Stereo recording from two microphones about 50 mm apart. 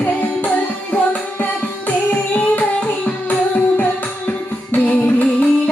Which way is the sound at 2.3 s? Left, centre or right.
Left.